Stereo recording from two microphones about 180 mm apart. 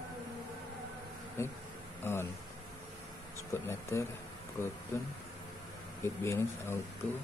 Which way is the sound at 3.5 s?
15° left (ahead or behind).